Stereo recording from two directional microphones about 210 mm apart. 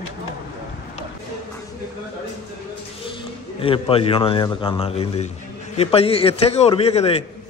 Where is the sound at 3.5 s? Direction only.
25° left (ahead or behind).